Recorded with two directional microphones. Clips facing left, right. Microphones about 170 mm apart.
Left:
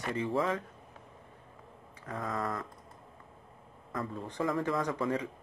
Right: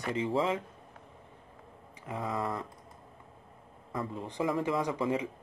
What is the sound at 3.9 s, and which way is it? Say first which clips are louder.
Speech: right 1 dB; 25° right (ahead or behind).